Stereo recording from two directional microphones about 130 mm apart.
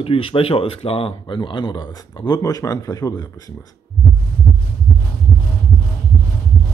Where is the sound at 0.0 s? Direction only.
45° left (ahead or behind); by 3.3 s 25° left (ahead or behind).